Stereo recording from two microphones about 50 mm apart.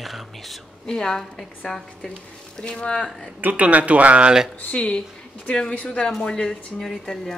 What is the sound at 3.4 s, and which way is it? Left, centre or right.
Speech, right.